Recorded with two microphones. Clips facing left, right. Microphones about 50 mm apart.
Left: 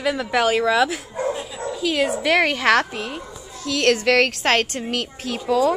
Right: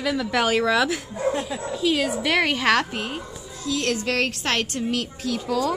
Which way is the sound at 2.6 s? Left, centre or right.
Left.